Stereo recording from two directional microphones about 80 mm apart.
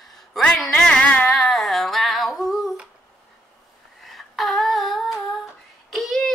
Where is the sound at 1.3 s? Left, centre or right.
Centre.